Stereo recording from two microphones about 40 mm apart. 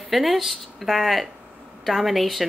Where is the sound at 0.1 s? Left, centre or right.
Centre.